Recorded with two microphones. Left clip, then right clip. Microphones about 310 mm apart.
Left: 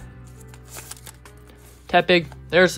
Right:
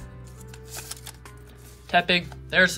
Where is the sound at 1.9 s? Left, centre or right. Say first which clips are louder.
Left 4 dB; left.